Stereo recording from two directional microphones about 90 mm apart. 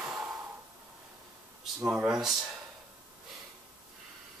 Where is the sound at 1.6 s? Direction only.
10° right (ahead or behind).